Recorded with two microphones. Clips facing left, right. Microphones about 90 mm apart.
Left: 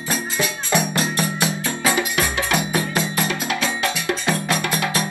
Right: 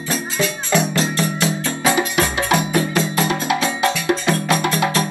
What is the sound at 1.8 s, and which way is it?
Music, 20° right (ahead or behind).